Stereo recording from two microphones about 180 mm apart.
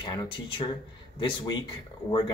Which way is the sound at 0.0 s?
25° left (ahead or behind).